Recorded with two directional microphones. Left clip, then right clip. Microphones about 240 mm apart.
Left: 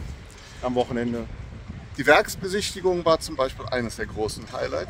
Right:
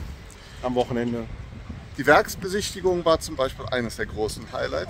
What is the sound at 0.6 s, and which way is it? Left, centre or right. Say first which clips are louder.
Speech: even; centre.